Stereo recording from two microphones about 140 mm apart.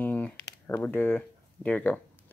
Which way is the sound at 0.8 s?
15° left (ahead or behind).